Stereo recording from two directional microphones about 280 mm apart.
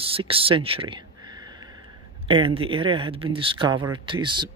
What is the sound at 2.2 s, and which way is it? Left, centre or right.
Speech, centre.